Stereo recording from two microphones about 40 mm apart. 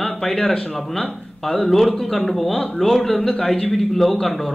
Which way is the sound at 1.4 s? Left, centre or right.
Centre.